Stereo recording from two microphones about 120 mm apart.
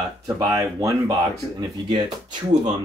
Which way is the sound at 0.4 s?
25° right (ahead or behind).